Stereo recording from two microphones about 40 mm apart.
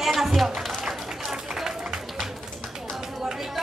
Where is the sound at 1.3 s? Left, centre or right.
Centre.